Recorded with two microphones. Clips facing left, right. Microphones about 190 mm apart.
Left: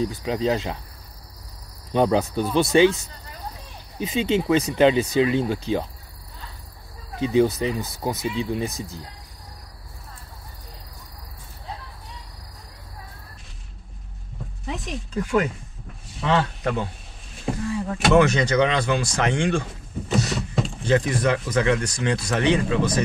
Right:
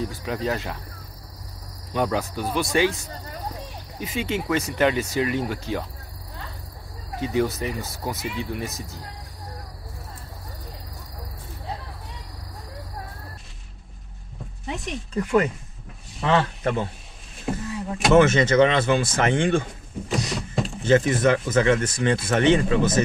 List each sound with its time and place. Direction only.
0.2 s speech: 20° left (ahead or behind)
2.0 s speech: 25° left (ahead or behind)
4.0 s speech: 20° left (ahead or behind)
7.2 s speech: 20° left (ahead or behind)
14.7 s speech: centre (ahead or behind)